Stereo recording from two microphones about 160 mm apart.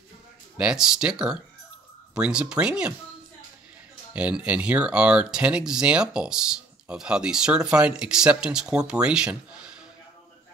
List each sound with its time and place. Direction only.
0.6 s speech: 5° right (ahead or behind)
4.1 s speech: 5° right (ahead or behind)